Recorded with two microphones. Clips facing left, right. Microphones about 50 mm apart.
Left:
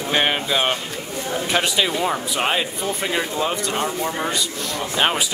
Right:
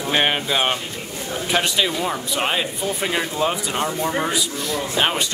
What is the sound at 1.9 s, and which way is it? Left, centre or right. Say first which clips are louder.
Speech: left 2 dB; centre.